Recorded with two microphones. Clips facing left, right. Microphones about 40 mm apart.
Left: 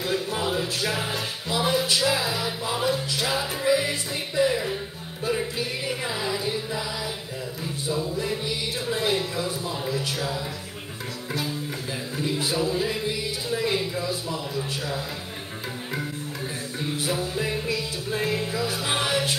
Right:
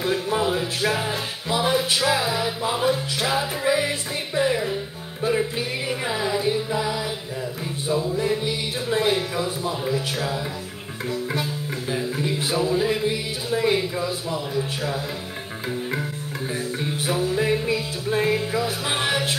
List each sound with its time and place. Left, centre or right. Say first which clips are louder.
0.0 s music: right 4 dB; centre
12.2 s a sound: left 1 dB; right
17.1 s music: right 8 dB; centre